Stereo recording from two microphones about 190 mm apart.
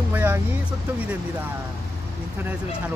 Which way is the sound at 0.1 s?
10° right (ahead or behind).